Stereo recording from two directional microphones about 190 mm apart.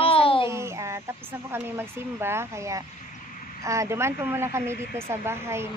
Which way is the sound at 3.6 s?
15° right (ahead or behind).